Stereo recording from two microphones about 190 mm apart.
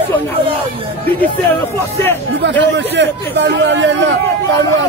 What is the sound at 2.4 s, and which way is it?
Speech, 70° right (ahead or behind).